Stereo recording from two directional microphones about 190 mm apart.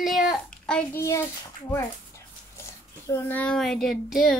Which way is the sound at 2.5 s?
15° left (ahead or behind).